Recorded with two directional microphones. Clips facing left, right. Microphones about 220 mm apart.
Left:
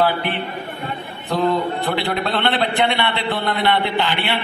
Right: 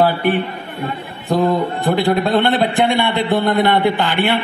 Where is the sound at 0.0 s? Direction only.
45° right (ahead or behind).